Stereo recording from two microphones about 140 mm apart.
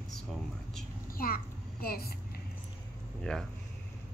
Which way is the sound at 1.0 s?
90° left.